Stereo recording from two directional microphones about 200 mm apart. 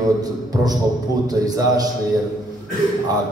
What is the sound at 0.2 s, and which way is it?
A man's voice, 20° right (ahead or behind).